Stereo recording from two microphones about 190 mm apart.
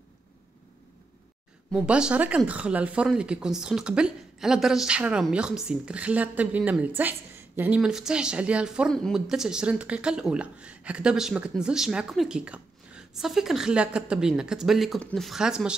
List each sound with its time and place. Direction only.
1.7 s speech: 5° right (ahead or behind)